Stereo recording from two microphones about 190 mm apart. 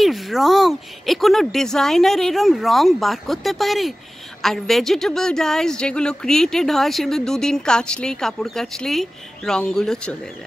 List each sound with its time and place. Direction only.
0.0 s a woman's voice: centre (ahead or behind)